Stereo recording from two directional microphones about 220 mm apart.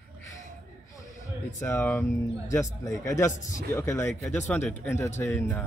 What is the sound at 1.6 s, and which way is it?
Speech, 10° left (ahead or behind).